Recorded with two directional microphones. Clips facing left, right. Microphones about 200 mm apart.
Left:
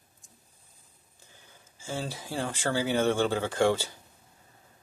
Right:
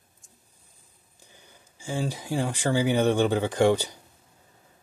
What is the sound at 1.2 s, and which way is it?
Speech, 15° right (ahead or behind).